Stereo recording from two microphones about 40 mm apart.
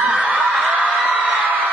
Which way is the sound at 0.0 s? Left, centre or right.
Right.